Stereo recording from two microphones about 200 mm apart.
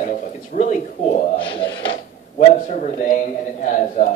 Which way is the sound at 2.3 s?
40° left (ahead or behind).